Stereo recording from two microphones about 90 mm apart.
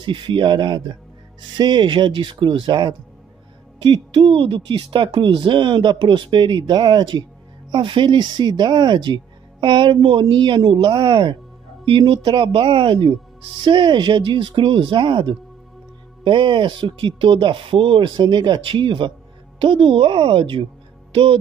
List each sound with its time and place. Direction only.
0.0 s speech: 65° right (ahead or behind)
3.8 s speech: 80° right; by 11.3 s 65° right (ahead or behind)
12.1 s speech: 75° right (ahead or behind)
21.1 s speech: 80° right